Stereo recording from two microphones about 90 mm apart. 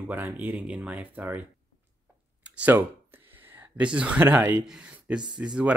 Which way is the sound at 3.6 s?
15° right (ahead or behind).